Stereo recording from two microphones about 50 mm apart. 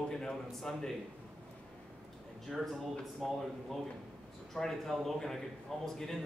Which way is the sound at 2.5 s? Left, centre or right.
Centre.